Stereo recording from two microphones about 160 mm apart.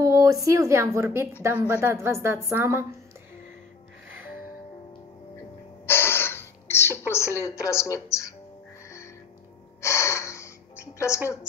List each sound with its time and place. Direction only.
0.0 s a woman's voice: 20° right (ahead or behind)
5.9 s a sound: 15° left (ahead or behind)
7.0 s a woman's voice: 15° left (ahead or behind)
9.8 s gasp: 20° left (ahead or behind)